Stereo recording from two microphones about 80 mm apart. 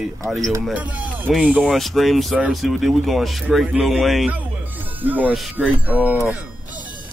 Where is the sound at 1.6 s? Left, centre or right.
Centre.